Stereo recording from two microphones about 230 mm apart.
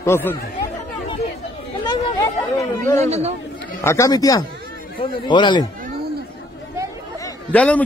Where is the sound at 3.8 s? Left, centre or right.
Centre.